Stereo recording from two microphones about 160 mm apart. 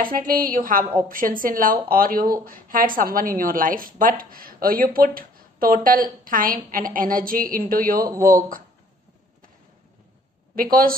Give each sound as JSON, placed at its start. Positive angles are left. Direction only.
{"t": 0.0, "sound": "a woman's voice", "side_deg": -60}
{"t": 10.5, "sound": "a woman's voice", "side_deg": -65}